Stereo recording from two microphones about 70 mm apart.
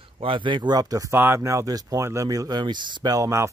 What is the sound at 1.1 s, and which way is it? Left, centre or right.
Speech, right.